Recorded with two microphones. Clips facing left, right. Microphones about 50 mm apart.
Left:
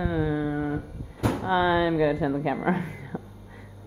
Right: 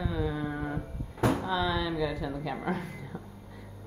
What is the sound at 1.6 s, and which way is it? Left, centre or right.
Speech, left.